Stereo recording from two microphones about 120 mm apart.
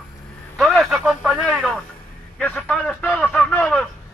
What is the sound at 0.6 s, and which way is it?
Radio, centre (ahead or behind).